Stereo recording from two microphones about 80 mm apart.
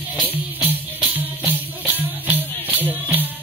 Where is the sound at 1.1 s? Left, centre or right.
Right.